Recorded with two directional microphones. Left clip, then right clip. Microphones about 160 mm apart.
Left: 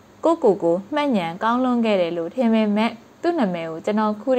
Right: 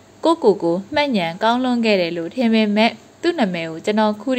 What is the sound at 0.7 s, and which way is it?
A woman's voice, 10° right (ahead or behind).